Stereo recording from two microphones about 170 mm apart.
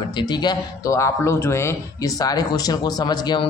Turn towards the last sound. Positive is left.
turn(degrees=25)  # may be behind; listen again after turning